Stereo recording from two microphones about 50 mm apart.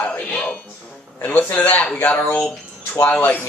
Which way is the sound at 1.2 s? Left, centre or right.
Left.